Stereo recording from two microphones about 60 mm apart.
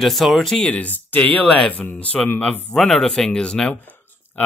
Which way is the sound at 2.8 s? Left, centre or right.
Centre.